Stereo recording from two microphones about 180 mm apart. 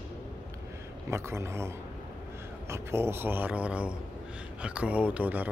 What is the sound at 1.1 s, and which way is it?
Speech, 15° right (ahead or behind).